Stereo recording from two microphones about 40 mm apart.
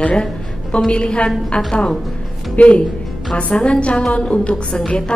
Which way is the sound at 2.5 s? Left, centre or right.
Left.